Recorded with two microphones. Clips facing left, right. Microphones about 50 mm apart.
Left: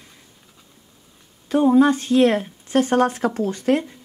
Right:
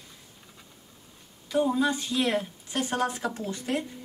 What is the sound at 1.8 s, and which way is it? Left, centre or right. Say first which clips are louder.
Speech: left 11 dB; left.